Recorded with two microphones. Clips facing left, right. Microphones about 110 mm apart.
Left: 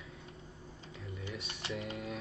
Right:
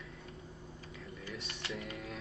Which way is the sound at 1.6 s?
25° left (ahead or behind).